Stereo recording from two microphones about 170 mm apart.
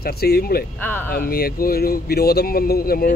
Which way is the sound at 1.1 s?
60° left (ahead or behind).